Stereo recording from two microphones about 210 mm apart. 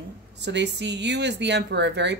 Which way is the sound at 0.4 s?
55° right (ahead or behind).